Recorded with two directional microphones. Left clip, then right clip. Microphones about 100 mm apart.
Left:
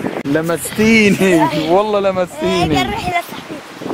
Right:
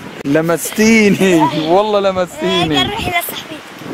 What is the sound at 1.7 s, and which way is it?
Speech, 15° right (ahead or behind).